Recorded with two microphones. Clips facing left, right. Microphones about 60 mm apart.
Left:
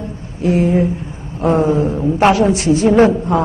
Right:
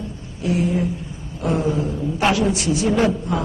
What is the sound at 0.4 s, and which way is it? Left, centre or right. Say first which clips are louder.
A woman's voice: left 7 dB; left.